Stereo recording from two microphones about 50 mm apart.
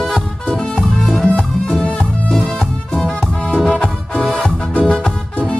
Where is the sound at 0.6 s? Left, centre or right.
Centre.